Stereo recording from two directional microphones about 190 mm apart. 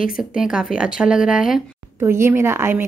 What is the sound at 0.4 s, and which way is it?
A woman's voice, 5° right (ahead or behind).